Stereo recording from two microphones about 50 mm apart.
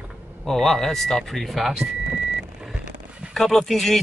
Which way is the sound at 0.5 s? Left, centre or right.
Centre.